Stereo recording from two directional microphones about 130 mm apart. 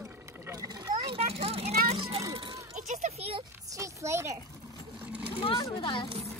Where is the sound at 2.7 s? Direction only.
65° right (ahead or behind).